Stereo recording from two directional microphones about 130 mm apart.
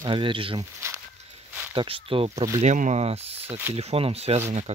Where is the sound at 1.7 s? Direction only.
45° right (ahead or behind).